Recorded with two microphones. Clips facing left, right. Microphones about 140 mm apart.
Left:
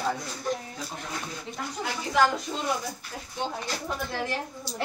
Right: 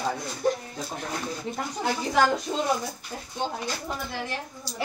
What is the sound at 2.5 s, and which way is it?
Speech, 25° right (ahead or behind).